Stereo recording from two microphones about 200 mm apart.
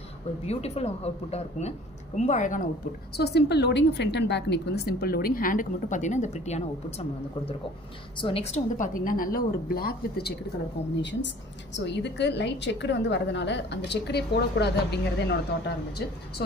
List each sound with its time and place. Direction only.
0.5 s speech: 30° left (ahead or behind)
3.2 s a woman's voice: 55° left (ahead or behind)
11.0 s a woman's voice: 60° left (ahead or behind)